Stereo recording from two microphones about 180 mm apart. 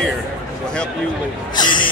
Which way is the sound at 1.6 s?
25° left (ahead or behind).